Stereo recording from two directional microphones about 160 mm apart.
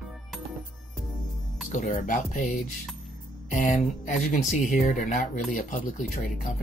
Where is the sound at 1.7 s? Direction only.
50° left (ahead or behind).